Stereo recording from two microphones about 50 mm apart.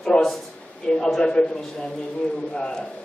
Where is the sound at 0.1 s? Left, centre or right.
Left.